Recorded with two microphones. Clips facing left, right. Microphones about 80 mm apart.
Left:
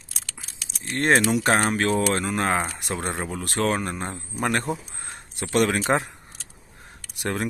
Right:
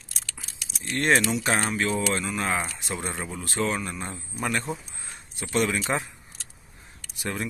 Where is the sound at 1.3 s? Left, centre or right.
Left.